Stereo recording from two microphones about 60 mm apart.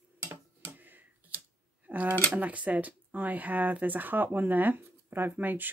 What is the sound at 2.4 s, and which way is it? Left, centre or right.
Speech, right.